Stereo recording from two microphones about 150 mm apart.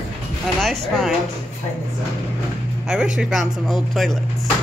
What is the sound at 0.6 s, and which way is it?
Speech, centre (ahead or behind).